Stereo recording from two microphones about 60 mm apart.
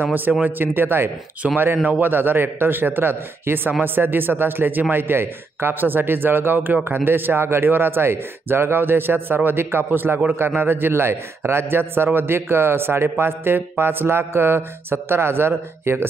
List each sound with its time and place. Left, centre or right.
0.1 s a man's voice: right
1.4 s speech: centre
1.8 s a man's voice: right